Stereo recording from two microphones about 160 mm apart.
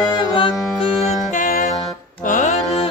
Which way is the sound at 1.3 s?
55° left (ahead or behind).